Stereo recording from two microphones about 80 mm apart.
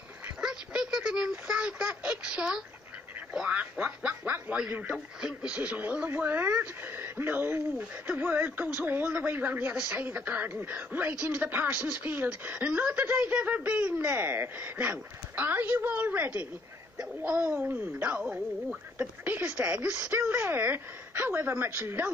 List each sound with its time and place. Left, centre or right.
0.4 s a sound: centre
3.3 s quack: centre
4.9 s a child's voice: centre; by 22.0 s right